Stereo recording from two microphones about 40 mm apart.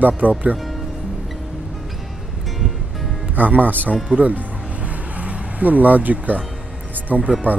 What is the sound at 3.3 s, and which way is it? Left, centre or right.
Speech, right.